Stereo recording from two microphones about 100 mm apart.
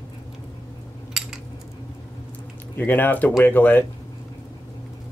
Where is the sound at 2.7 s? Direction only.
20° left (ahead or behind).